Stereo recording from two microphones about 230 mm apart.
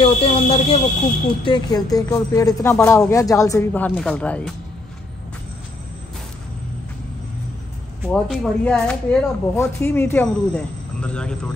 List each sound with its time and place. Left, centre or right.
0.0 s speech: left; by 4.6 s centre
8.1 s speech: centre